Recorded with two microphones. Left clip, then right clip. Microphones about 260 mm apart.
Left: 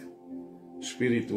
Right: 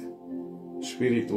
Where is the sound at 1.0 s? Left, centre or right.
Centre.